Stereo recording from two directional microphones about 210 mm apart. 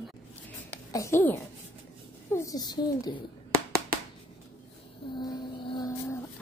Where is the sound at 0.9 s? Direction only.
10° left (ahead or behind).